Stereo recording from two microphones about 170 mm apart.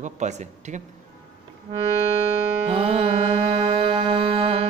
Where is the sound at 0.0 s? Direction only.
45° right (ahead or behind).